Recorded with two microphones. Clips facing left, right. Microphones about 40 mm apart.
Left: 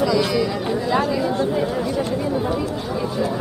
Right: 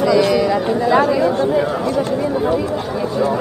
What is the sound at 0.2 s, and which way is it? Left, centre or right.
Chatter, centre.